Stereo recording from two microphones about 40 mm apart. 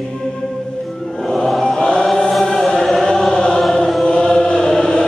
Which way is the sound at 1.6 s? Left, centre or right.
Left.